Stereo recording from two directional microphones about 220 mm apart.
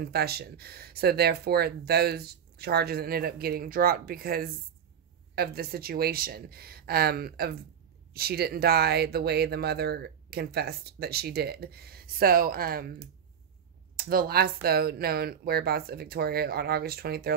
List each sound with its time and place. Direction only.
0.0 s speech: 45° right (ahead or behind)
13.9 s speech: 45° right (ahead or behind)